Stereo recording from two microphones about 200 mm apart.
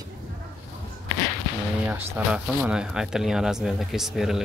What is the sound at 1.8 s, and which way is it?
Speech, 10° right (ahead or behind).